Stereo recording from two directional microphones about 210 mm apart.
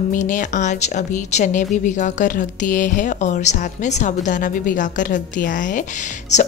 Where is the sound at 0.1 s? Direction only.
35° left (ahead or behind).